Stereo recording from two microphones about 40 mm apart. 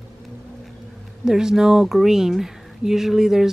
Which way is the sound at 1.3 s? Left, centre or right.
Centre.